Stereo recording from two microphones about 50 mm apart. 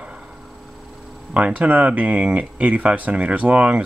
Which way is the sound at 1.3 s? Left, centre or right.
Right.